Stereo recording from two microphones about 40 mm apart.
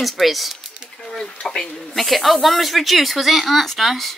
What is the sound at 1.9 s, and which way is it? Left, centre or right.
Speech, centre.